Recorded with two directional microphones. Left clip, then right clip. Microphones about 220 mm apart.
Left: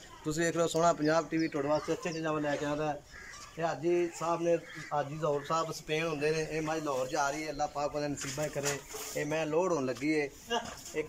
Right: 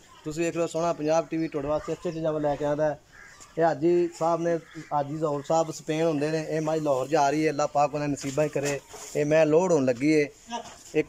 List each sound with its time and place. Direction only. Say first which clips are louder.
0.3 s speech: right 3 dB; 5° right (ahead or behind)
2.2 s speech: right 8 dB; 25° right (ahead or behind); by 11.1 s 50° right (ahead or behind)